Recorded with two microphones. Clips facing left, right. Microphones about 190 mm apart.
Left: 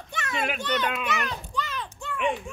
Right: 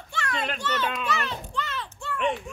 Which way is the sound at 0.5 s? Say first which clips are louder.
Left 1 dB; 15° left (ahead or behind).